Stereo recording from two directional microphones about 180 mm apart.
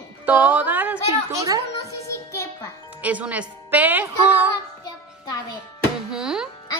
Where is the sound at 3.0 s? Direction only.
10° right (ahead or behind).